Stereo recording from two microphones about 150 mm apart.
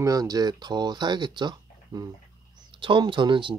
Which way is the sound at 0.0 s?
25° right (ahead or behind).